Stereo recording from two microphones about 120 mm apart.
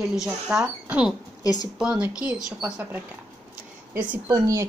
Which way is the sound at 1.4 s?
30° left (ahead or behind).